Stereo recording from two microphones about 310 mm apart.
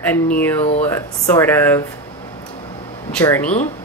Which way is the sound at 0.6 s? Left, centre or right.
Left.